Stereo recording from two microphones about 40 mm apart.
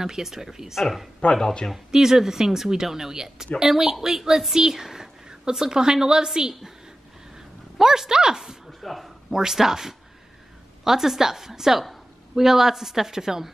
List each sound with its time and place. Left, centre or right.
0.0 s a woman's voice: centre
1.3 s speech: centre
1.9 s a woman's voice: centre
7.7 s a woman's voice: centre
8.8 s speech: centre
9.3 s a woman's voice: centre